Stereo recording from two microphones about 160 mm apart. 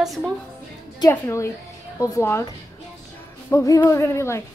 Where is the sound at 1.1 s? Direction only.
15° left (ahead or behind).